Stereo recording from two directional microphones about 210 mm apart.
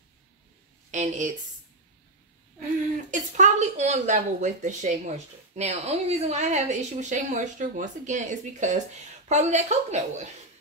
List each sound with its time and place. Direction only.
0.9 s speech: 35° right (ahead or behind)
2.6 s speech: 35° right (ahead or behind)